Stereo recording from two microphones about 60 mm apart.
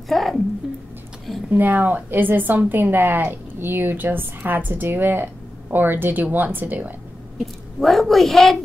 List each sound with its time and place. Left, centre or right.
0.1 s speech: centre
1.5 s a woman's voice: right
7.3 s speech: centre